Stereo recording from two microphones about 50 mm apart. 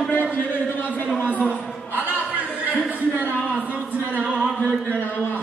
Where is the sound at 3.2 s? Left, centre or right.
Left.